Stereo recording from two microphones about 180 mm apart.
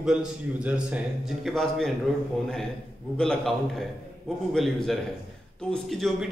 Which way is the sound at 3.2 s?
5° left (ahead or behind).